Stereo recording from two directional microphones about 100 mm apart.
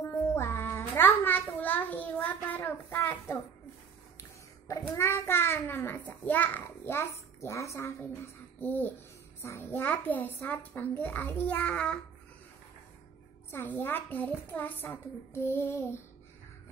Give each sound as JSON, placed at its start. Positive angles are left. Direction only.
{"t": 0.3, "sound": "a child's voice", "side_deg": 25}
{"t": 4.6, "sound": "a child's voice", "side_deg": 30}
{"t": 13.5, "sound": "a child's voice", "side_deg": 25}